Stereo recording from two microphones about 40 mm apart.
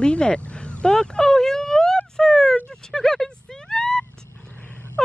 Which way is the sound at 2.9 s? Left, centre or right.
Centre.